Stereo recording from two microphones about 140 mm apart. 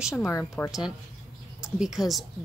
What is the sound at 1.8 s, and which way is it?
Speech, centre (ahead or behind).